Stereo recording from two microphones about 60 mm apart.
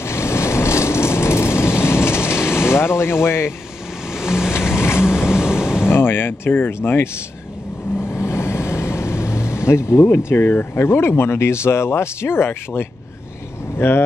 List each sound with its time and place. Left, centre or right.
0.0 s vehicle: left
4.1 s vehicle: centre
4.7 s vehicle: left
5.0 s vehicle: centre
5.9 s speech: left
8.1 s vehicle: left
10.3 s speech: left